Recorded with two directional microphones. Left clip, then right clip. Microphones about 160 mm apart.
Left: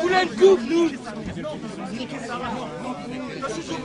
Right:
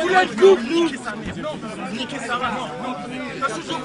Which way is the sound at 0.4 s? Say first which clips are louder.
Even; 40° left (ahead or behind).